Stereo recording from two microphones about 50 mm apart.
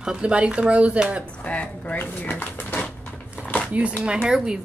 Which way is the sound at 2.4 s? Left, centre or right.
Left.